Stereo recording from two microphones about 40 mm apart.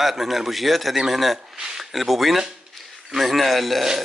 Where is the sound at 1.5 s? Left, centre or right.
Centre.